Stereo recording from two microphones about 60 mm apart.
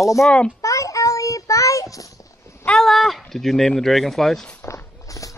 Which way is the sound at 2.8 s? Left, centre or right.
Centre.